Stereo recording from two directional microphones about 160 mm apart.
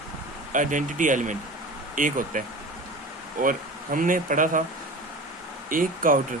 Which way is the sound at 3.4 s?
60° right (ahead or behind).